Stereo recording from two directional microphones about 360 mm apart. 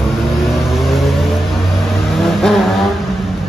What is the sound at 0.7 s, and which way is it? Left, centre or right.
Vehicle, centre.